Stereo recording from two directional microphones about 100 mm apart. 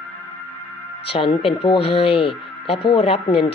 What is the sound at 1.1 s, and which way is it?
Speech, 65° left (ahead or behind).